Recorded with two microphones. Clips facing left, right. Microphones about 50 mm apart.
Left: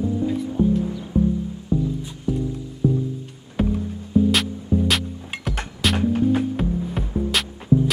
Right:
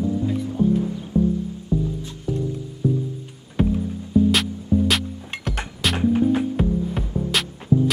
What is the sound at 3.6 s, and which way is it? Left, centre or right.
Music, centre.